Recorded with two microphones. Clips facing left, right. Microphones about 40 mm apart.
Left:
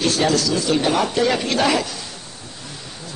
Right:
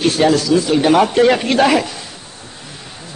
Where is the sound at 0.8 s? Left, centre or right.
Right.